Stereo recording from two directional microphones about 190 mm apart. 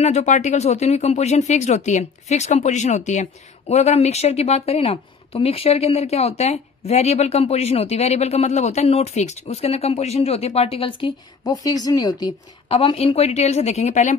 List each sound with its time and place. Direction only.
0.0 s speech: 35° left (ahead or behind)